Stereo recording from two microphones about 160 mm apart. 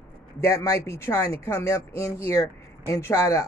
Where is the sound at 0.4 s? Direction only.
20° left (ahead or behind).